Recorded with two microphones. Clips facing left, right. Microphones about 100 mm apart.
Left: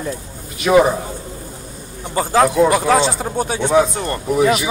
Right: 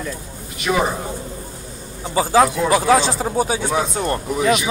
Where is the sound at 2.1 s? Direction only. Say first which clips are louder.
Left 1 dB; 5° right (ahead or behind).